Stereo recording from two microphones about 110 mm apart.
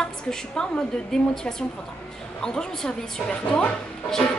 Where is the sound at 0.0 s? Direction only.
5° left (ahead or behind).